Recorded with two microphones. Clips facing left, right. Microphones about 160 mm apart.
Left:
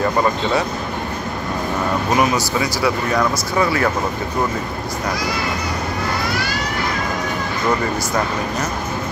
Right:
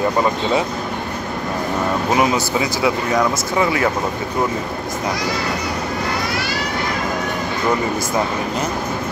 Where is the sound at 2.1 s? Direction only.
20° right (ahead or behind).